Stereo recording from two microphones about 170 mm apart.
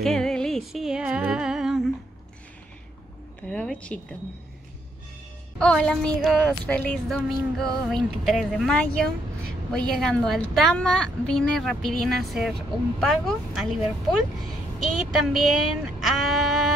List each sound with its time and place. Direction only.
0.0 s music: 5° left (ahead or behind)
3.4 s speech: 5° left (ahead or behind)
5.6 s speech: 5° left (ahead or behind)
15.1 s speech: centre (ahead or behind)
16.0 s a sound: centre (ahead or behind)